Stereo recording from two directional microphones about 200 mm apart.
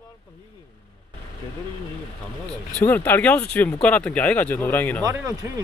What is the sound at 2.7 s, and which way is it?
Speech, 10° left (ahead or behind).